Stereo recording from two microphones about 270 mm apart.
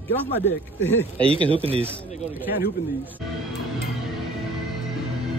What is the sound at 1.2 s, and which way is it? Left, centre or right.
Speech, centre.